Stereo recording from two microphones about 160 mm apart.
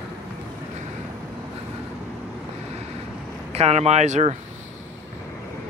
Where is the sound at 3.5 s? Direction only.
40° right (ahead or behind).